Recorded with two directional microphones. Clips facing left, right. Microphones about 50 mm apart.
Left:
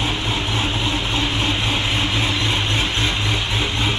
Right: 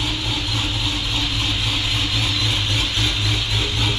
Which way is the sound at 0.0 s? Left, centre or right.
Left.